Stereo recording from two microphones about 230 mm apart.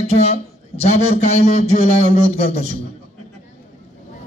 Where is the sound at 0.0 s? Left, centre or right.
Left.